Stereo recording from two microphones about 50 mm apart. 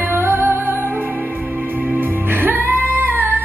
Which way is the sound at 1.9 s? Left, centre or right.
Right.